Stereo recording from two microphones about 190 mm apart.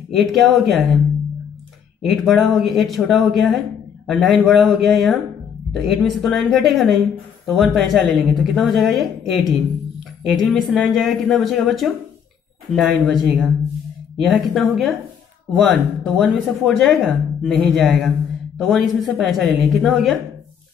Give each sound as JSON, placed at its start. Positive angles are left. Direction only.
{"t": 0.1, "sound": "speech", "side_deg": 0}
{"t": 2.0, "sound": "speech", "side_deg": 0}